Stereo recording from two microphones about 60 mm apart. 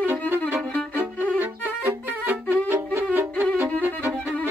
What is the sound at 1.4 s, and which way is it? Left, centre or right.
Music, right.